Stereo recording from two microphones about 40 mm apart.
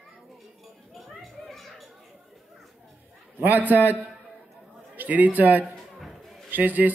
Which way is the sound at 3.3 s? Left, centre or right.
Right.